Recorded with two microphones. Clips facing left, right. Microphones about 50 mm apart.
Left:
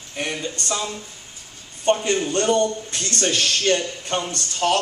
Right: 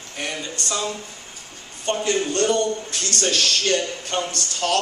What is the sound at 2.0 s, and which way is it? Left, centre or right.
A man's voice, left.